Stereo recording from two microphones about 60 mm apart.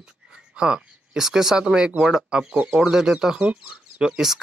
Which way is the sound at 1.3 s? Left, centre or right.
Centre.